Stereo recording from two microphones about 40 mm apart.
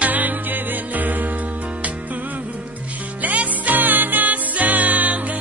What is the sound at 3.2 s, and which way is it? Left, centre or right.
Music, right.